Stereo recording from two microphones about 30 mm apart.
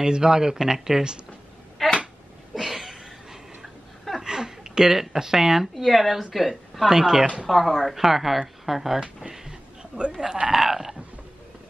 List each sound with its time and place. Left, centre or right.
0.0 s speech: right
1.8 s a sound: centre
2.5 s a sound: centre
4.9 s speech: centre
5.8 s a woman's voice: centre
6.9 s speech: centre
7.4 s speech: centre
9.3 s a sound: centre
9.9 s speech: right
10.5 s speech: centre